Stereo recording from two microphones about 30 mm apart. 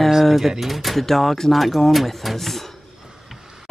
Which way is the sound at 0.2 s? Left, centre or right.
Centre.